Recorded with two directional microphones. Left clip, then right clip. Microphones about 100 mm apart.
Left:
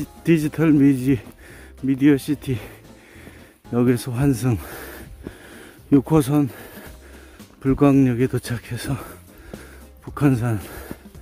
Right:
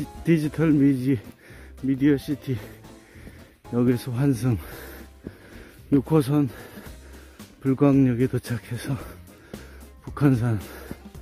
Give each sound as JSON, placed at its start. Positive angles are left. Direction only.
{"t": 0.0, "sound": "speech", "side_deg": 35}
{"t": 1.9, "sound": "speech", "side_deg": 60}
{"t": 3.7, "sound": "speech", "side_deg": 50}
{"t": 4.1, "sound": "speech", "side_deg": 35}
{"t": 5.6, "sound": "a sound", "side_deg": 40}
{"t": 6.4, "sound": "music", "side_deg": 30}
{"t": 7.6, "sound": "speech", "side_deg": 40}
{"t": 10.1, "sound": "speech", "side_deg": 25}